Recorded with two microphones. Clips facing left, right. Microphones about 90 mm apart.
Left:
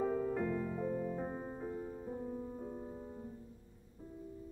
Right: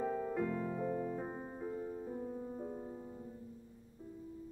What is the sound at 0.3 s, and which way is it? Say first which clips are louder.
Music: even; centre (ahead or behind).